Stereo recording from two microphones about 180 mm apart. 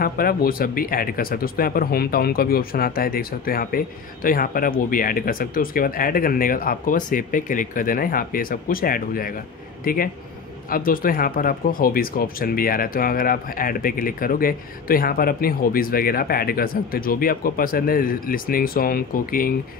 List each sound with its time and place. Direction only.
0.0 s speech: 55° left (ahead or behind)